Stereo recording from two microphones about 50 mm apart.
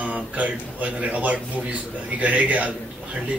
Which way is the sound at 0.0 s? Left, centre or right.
Right.